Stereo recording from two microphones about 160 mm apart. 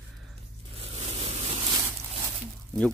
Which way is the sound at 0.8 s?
40° right (ahead or behind).